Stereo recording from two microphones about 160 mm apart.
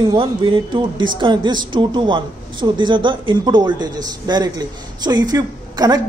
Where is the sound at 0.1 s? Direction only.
30° right (ahead or behind).